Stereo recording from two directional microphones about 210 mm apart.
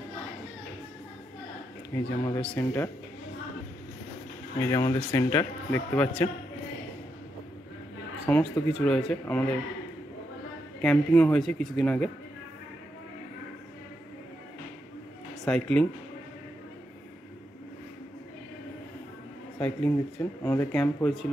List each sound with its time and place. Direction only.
1.9 s speech: 15° left (ahead or behind)
4.6 s speech: 15° left (ahead or behind)
8.3 s speech: 10° left (ahead or behind)
10.8 s speech: 5° left (ahead or behind)
15.4 s speech: 5° left (ahead or behind)
19.6 s speech: 10° left (ahead or behind)